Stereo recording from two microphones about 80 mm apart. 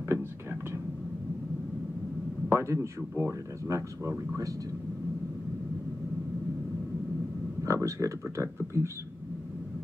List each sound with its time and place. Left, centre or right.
0.1 s a sound: right
2.5 s speech: right
7.6 s speech: right